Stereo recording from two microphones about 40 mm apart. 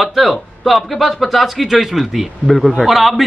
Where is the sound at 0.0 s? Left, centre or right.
Centre.